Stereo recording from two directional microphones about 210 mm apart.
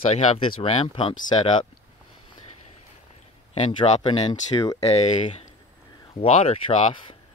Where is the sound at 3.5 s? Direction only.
30° left (ahead or behind).